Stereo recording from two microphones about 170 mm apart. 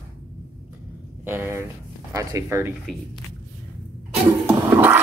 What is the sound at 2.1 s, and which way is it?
Speech, 15° right (ahead or behind).